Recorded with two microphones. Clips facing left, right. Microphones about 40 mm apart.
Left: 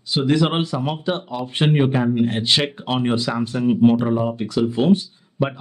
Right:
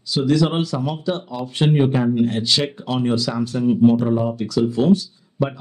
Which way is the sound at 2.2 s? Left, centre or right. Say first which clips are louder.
Left 1 dB; left.